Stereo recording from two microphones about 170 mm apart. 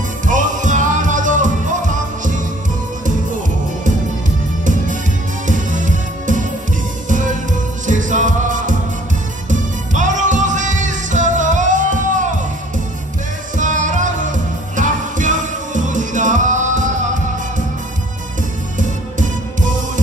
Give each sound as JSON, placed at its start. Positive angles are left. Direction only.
{"t": 0.3, "sound": "music", "side_deg": -50}
{"t": 5.5, "sound": "music", "side_deg": -50}
{"t": 13.6, "sound": "music", "side_deg": -50}
{"t": 18.8, "sound": "music", "side_deg": -50}